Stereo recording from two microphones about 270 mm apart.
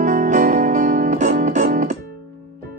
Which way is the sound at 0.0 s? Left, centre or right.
Right.